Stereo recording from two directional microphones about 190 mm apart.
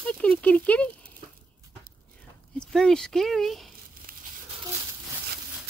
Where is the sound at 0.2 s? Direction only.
5° left (ahead or behind).